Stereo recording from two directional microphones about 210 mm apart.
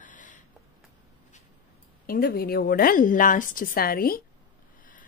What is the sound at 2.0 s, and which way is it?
A woman's voice, 45° left (ahead or behind).